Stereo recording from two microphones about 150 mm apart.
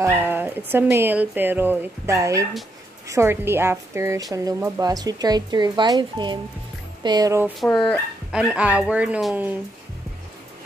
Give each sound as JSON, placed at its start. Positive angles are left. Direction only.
{"t": 0.0, "sound": "a woman's voice", "side_deg": -15}
{"t": 7.6, "sound": "speech", "side_deg": 5}
{"t": 8.3, "sound": "speech", "side_deg": -5}